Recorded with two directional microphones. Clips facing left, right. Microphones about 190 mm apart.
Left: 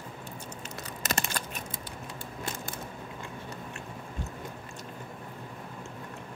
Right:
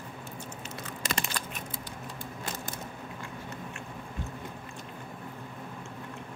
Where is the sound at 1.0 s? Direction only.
45° left (ahead or behind).